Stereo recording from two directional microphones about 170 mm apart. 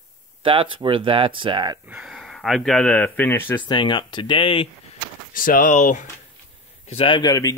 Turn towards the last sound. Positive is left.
turn(degrees=20)  # may be behind; listen again after turning